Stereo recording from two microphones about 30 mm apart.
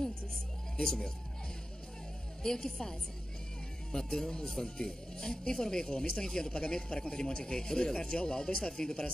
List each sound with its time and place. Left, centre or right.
0.0 s speech: centre
2.4 s speech: centre
4.4 s speech: centre